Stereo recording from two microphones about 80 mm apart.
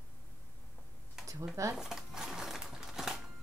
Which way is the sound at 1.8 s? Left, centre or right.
Centre.